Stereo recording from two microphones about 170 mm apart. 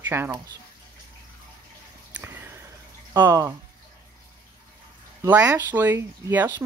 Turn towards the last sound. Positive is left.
turn(degrees=-15)  # may be behind; listen again after turning